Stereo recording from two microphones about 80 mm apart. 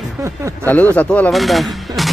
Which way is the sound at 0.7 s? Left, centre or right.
Left.